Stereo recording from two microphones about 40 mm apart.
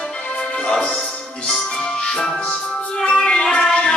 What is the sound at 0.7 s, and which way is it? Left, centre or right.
Speech, centre.